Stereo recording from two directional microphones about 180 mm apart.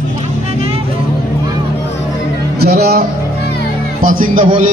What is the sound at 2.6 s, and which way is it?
Music, 60° right (ahead or behind).